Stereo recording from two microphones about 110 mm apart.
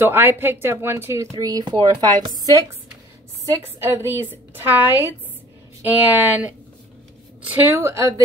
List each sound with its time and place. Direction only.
0.0 s a woman's voice: 20° right (ahead or behind)
1.6 s speech: 45° right (ahead or behind)
3.4 s a woman's voice: 30° right (ahead or behind)